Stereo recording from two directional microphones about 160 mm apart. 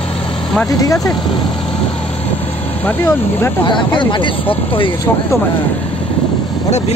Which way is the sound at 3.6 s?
30° left (ahead or behind).